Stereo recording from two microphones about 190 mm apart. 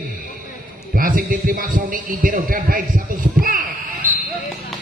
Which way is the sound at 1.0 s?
45° right (ahead or behind).